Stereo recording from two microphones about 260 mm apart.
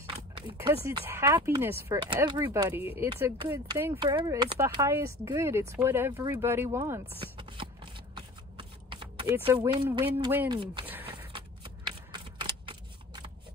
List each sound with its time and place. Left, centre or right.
0.0 s a sound: centre
0.8 s speech: centre
7.2 s shuffling cards: centre
10.3 s speech: centre
10.6 s speech: centre
11.3 s shuffling cards: centre